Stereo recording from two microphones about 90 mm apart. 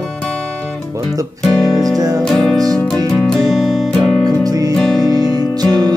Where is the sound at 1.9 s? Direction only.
45° right (ahead or behind).